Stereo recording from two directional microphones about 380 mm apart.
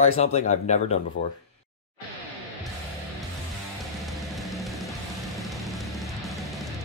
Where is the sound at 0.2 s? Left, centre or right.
Centre.